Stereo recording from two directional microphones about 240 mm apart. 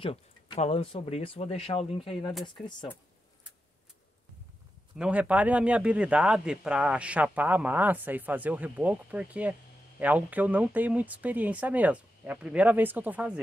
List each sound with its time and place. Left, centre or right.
0.0 s speech: left
4.9 s speech: centre